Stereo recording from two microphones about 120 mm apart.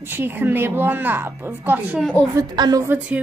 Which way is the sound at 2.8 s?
15° right (ahead or behind).